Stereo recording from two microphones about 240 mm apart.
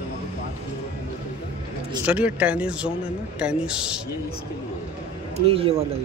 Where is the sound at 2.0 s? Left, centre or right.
Centre.